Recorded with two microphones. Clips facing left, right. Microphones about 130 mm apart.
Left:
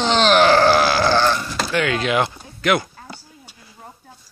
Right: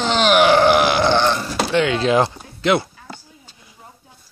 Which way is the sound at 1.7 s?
25° right (ahead or behind).